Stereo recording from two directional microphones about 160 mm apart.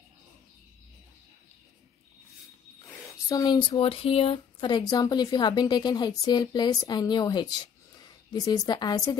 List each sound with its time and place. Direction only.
3.3 s speech: 25° left (ahead or behind)